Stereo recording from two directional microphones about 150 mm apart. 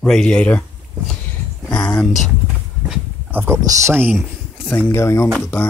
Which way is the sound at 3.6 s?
20° right (ahead or behind).